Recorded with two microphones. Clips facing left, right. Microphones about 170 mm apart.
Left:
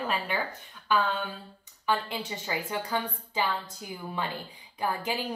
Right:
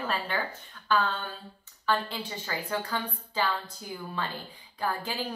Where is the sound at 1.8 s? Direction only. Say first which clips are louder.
Even; 15° left (ahead or behind).